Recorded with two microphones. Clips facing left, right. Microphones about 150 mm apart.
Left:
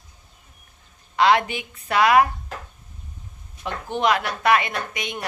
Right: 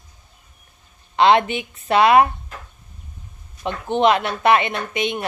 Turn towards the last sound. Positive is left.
turn(degrees=-25)  # may be behind; listen again after turning